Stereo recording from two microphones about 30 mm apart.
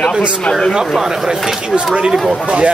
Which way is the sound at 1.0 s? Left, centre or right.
Centre.